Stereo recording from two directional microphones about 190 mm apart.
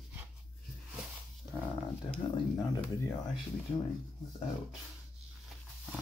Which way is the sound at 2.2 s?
25° left (ahead or behind).